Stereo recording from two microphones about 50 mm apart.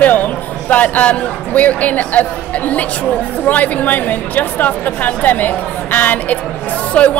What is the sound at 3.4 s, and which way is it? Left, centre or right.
A woman's voice, left.